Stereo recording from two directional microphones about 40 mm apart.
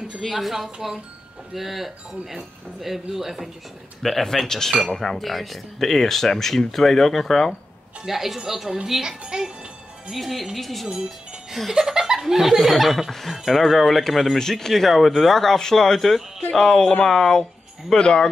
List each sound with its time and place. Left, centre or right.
0.1 s speech: centre
4.0 s speech: centre
8.0 s a woman's voice: centre
9.2 s music: centre
10.1 s speech: centre
11.1 s music: centre
11.7 s speech: centre
17.9 s speech: left